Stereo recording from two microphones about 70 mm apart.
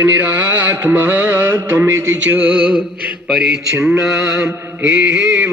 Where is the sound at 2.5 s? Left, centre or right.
Left.